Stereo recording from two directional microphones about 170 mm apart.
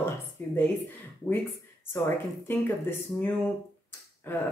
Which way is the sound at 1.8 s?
15° left (ahead or behind).